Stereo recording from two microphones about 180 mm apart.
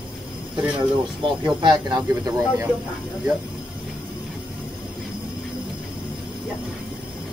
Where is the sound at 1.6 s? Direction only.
25° right (ahead or behind).